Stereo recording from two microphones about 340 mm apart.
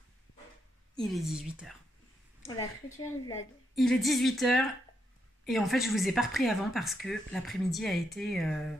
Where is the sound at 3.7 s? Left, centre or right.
Centre.